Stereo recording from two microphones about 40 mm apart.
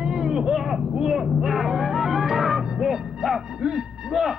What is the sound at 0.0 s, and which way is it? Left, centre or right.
Vehicle, centre.